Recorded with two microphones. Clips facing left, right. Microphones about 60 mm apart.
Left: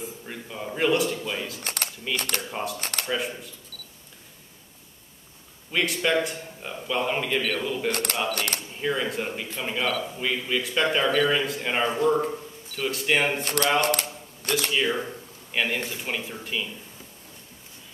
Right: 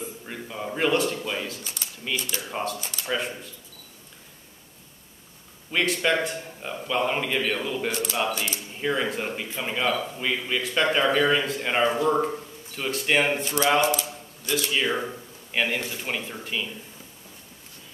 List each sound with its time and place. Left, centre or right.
0.0 s a man's voice: centre
1.6 s speech: left
2.5 s a man's voice: centre
2.8 s speech: left
3.1 s a man's voice: centre
3.7 s camera: right
5.7 s a man's voice: centre
7.9 s speech: left
8.8 s a man's voice: centre
13.4 s speech: left
13.7 s a sound: left
14.7 s a man's voice: centre